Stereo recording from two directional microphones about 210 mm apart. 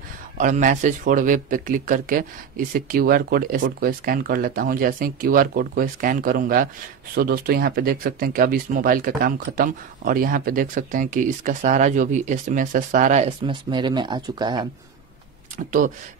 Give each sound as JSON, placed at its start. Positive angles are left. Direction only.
{"t": 0.4, "sound": "speech", "side_deg": -35}
{"t": 15.5, "sound": "speech", "side_deg": -40}